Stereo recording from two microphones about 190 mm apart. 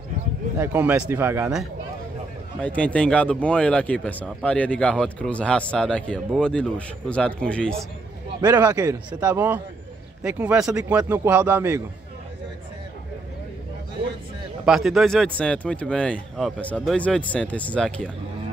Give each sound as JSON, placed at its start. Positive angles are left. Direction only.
{"t": 0.6, "sound": "a man's voice", "side_deg": -10}
{"t": 2.6, "sound": "speech", "side_deg": 5}
{"t": 8.4, "sound": "a man's voice", "side_deg": -20}
{"t": 14.6, "sound": "speech", "side_deg": 0}